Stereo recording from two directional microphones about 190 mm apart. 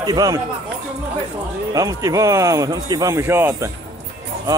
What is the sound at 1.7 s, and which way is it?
Speech, 15° right (ahead or behind).